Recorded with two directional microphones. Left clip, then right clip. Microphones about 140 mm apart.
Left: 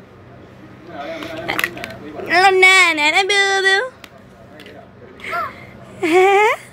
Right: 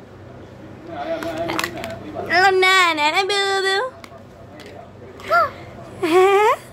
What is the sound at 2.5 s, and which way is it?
Speech, 10° left (ahead or behind).